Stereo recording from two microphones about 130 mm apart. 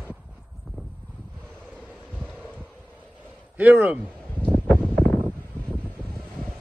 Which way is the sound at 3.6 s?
15° right (ahead or behind).